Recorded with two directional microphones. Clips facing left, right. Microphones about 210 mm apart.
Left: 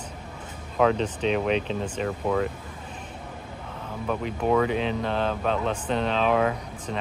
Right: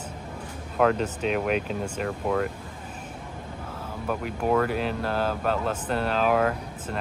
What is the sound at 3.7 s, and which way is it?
Speech, 5° right (ahead or behind).